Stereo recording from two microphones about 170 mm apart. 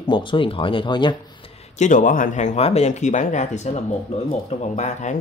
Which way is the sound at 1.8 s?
50° left (ahead or behind).